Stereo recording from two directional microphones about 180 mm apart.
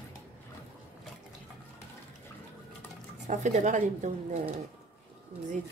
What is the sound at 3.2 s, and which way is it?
A woman's voice, 40° right (ahead or behind).